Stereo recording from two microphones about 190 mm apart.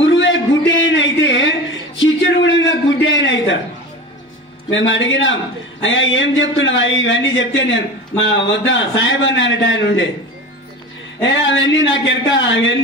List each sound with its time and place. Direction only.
0.0 s a sound: 75° left (ahead or behind)
4.6 s a man's voice: 80° left
11.2 s a man's voice: 75° left (ahead or behind)